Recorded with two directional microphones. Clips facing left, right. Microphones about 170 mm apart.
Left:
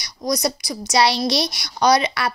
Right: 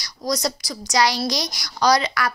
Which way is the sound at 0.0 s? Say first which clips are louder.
Left 2 dB; 20° left (ahead or behind).